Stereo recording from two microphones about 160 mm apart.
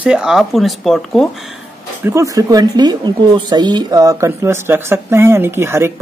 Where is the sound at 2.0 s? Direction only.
20° right (ahead or behind).